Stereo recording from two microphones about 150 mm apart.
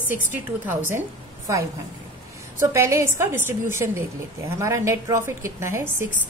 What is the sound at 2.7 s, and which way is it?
A woman's voice, 20° right (ahead or behind).